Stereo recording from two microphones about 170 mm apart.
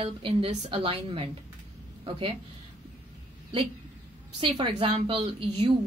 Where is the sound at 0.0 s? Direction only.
35° right (ahead or behind).